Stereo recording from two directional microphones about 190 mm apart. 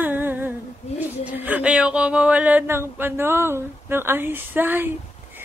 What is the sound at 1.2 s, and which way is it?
Speech, 10° right (ahead or behind).